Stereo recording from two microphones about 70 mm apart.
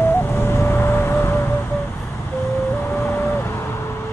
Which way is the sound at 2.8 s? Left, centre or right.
Left.